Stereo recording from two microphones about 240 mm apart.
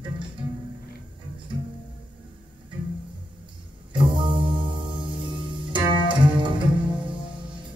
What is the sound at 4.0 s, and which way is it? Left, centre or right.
Music, right.